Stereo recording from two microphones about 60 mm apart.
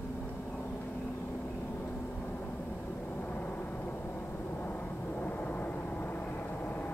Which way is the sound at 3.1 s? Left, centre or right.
Left.